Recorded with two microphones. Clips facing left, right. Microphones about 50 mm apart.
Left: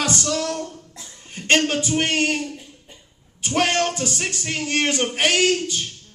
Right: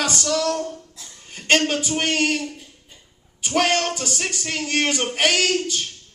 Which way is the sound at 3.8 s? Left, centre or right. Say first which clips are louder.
Left 1 dB; centre.